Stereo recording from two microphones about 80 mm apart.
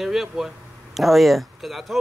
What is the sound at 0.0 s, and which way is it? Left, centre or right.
Speech, centre.